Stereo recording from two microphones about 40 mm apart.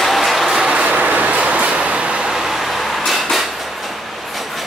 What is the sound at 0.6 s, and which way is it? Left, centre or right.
Vehicle, right.